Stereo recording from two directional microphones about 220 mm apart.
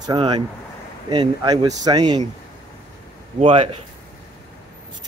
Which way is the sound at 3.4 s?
25° right (ahead or behind).